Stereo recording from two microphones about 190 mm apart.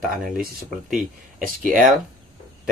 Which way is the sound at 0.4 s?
50° right (ahead or behind).